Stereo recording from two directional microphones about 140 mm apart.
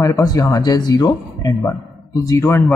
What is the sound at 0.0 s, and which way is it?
Speech, 25° left (ahead or behind).